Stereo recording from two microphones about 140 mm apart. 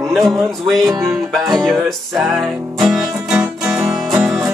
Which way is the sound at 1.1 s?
Centre (ahead or behind).